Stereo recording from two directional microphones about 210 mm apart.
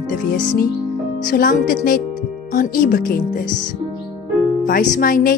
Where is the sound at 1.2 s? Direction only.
40° left (ahead or behind).